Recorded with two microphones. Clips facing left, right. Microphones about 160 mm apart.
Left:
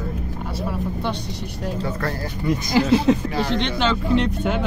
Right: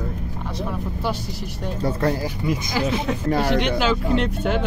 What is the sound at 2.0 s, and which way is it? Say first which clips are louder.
Speech: right 5 dB; 15° right (ahead or behind).